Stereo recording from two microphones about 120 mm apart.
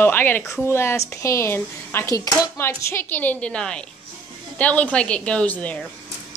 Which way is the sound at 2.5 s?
20° left (ahead or behind).